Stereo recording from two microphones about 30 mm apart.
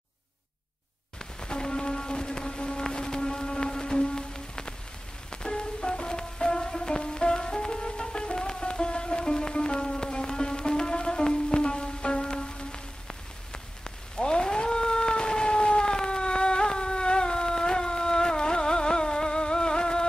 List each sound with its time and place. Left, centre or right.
1.4 s music: left
13.5 s rain on surface: left